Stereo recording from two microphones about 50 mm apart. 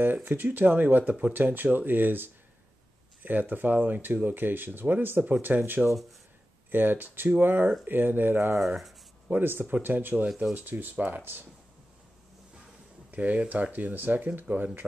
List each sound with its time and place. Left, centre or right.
0.0 s speech: right
5.8 s speech: centre
6.7 s speech: right
8.5 s speech: centre
9.3 s speech: right
13.1 s speech: right